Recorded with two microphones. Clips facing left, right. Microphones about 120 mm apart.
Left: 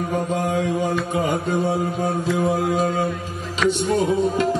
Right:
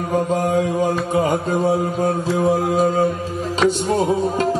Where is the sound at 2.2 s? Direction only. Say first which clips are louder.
Right 1 dB; 35° right (ahead or behind).